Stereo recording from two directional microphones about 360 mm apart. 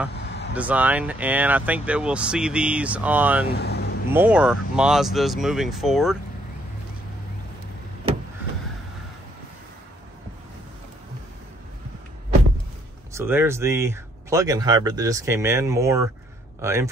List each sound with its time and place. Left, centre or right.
0.2 s vehicle: left
0.6 s speech: centre
3.5 s vehicle: left
4.1 s speech: centre
13.1 s speech: centre